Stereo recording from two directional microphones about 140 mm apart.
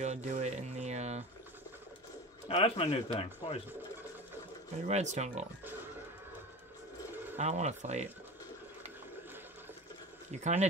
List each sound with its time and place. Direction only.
0.0 s music: 55° right (ahead or behind)
2.4 s speech: 45° left (ahead or behind)
4.8 s speech: 55° right (ahead or behind)
7.3 s speech: 55° right (ahead or behind)
10.4 s speech: 55° right (ahead or behind)